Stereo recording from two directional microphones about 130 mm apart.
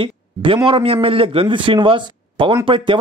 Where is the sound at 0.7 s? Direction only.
45° right (ahead or behind).